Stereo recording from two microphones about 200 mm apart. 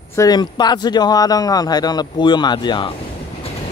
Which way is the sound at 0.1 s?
20° left (ahead or behind).